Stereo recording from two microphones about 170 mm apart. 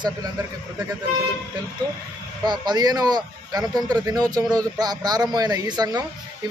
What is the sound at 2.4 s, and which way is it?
Speech, 25° right (ahead or behind).